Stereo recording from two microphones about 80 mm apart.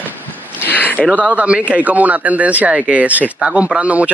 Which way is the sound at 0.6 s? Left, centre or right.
Left.